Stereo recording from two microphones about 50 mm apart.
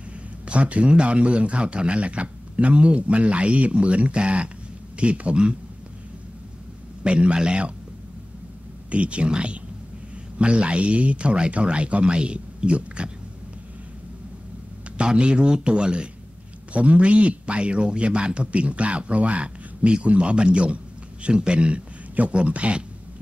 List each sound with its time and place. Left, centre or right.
0.5 s a man's voice: right
7.0 s a man's voice: right
8.9 s a man's voice: right
15.0 s a man's voice: right